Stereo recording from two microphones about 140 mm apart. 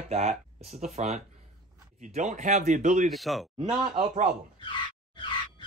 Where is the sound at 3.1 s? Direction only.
Centre (ahead or behind).